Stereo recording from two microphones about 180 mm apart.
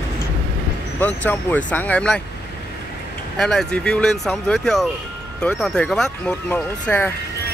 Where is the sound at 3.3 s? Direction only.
Centre (ahead or behind).